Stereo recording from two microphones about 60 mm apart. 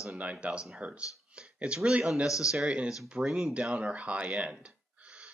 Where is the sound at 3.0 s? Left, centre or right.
Centre.